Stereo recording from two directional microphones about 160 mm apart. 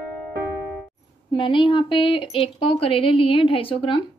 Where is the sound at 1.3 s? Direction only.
30° left (ahead or behind).